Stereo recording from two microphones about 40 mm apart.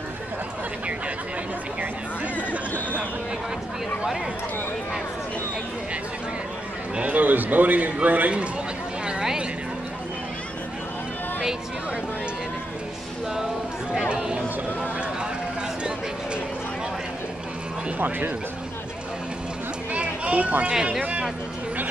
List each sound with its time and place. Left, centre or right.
7.0 s a man's voice: right
13.9 s chatter: centre
14.8 s run: right
17.9 s speech: right
19.9 s a sound: right